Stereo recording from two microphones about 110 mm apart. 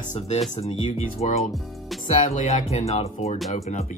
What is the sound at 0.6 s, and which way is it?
Speech, 70° left (ahead or behind).